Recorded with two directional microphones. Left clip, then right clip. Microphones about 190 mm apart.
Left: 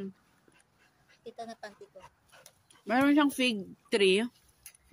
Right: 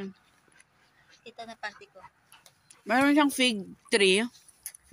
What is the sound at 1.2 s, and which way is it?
Speech, 35° left (ahead or behind).